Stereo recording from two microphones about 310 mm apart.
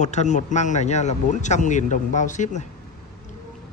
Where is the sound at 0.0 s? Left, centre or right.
Left.